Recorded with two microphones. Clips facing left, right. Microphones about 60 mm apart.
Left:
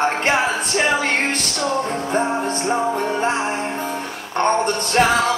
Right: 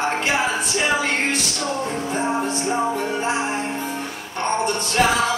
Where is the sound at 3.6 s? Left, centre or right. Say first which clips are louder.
Left 2 dB; left.